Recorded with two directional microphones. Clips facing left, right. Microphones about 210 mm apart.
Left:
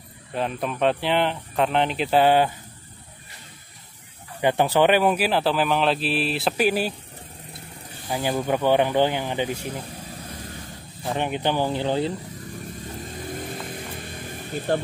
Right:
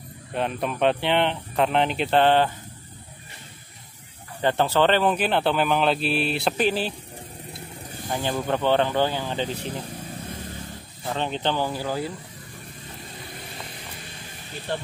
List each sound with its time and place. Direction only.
0.3 s speech: centre (ahead or behind)
4.4 s speech: 15° left (ahead or behind)
8.1 s speech: 10° left (ahead or behind)
11.1 s speech: 15° left (ahead or behind)
13.3 s vehicle: 50° left (ahead or behind)
14.7 s speech: 45° left (ahead or behind)